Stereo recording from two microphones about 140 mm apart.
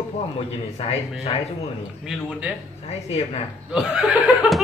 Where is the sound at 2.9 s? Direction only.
50° left (ahead or behind).